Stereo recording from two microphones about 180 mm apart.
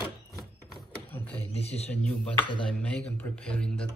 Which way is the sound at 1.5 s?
35° left (ahead or behind).